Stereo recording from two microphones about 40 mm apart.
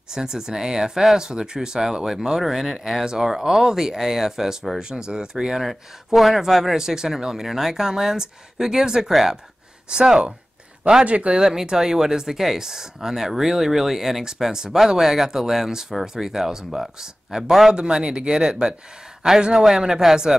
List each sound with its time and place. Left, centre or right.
0.1 s speech: centre
5.6 s speech: centre
11.1 s speech: right
11.3 s speech: centre
17.7 s speech: right